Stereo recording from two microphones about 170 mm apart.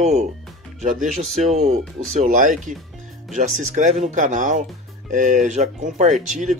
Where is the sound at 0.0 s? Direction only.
40° right (ahead or behind).